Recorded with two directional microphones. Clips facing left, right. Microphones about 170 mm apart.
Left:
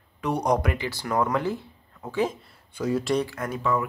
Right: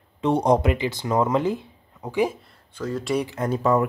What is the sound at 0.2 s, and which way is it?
Speech, 25° right (ahead or behind).